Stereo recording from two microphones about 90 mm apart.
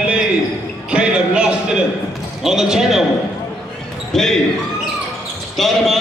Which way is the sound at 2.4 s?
5° right (ahead or behind).